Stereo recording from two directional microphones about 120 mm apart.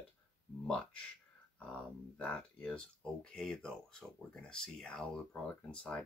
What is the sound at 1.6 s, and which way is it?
Speech, 10° left (ahead or behind).